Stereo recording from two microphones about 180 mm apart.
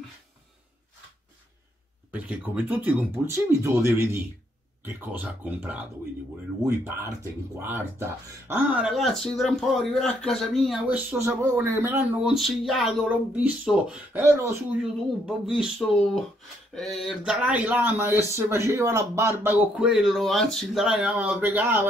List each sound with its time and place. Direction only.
2.0 s speech: 10° right (ahead or behind)
8.5 s speech: centre (ahead or behind)
14.8 s speech: centre (ahead or behind)
19.7 s speech: 5° right (ahead or behind)